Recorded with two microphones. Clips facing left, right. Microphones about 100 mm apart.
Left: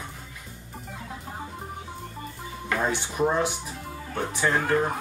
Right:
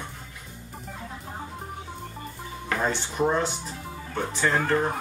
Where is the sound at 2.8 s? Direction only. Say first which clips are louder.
Even; 10° left (ahead or behind).